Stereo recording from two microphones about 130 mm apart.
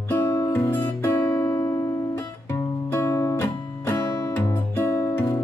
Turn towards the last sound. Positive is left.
turn(degrees=15)  # may be behind; listen again after turning